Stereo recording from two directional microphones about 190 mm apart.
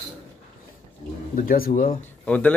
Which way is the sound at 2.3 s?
5° left (ahead or behind).